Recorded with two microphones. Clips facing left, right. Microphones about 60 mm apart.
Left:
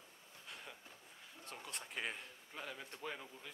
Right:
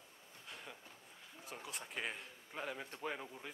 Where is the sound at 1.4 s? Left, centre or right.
Centre.